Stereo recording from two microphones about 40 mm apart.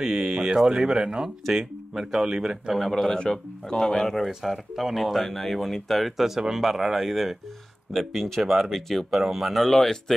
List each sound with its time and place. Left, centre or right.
0.0 s speech: centre
1.4 s speech: centre
3.1 s a man's voice: left
4.3 s speech: centre
9.7 s a man's voice: centre